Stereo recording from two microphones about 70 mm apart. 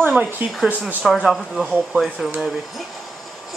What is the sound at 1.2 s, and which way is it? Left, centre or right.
Speech, centre.